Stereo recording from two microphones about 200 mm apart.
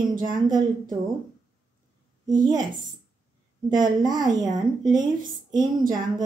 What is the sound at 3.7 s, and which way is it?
A woman's voice, 20° right (ahead or behind).